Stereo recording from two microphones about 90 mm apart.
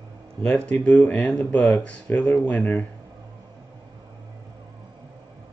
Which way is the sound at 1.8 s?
15° left (ahead or behind).